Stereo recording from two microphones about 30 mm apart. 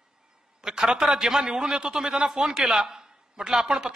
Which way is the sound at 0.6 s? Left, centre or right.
Right.